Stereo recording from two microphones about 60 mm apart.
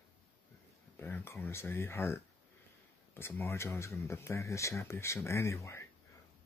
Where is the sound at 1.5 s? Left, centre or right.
Left.